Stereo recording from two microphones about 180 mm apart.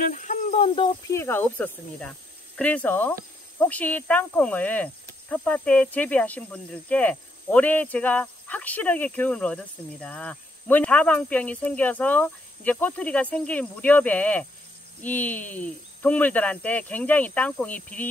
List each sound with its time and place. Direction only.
0.0 s speech: 45° left (ahead or behind)
1.0 s speech: 15° left (ahead or behind)